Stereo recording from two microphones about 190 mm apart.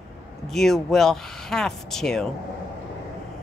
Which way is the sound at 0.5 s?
Centre (ahead or behind).